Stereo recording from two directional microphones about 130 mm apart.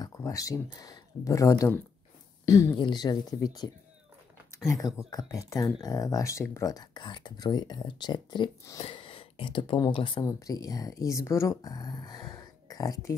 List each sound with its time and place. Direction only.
0.0 s speech: 25° left (ahead or behind)
2.7 s speech: 35° left (ahead or behind)
10.2 s speech: 25° left (ahead or behind)